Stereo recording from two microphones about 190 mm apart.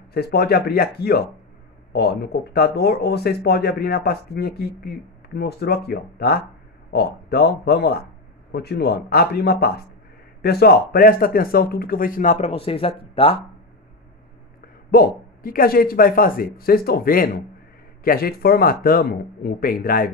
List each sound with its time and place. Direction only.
0.1 s speech: 55° left (ahead or behind); by 13.4 s 30° left (ahead or behind)
14.9 s speech: 50° left (ahead or behind)